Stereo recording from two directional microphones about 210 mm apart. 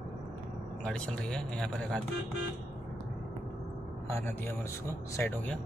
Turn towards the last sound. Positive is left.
turn(degrees=10)  # may be behind; listen again after turning